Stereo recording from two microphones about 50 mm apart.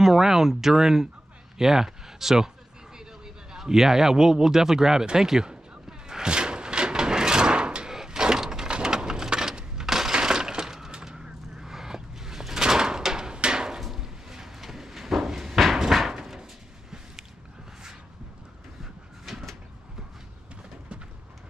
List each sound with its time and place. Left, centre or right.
0.0 s speech: centre
3.5 s speech: centre
5.0 s a sound: centre
7.9 s sliding door: centre
13.7 s drawer open or close: centre
18.8 s vehicle: centre